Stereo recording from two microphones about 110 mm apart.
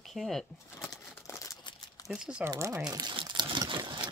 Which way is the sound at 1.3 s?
30° left (ahead or behind).